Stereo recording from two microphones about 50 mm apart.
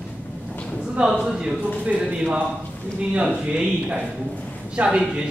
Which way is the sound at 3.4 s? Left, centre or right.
Right.